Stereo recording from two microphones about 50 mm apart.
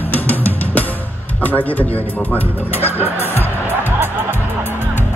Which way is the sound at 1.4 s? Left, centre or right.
Left.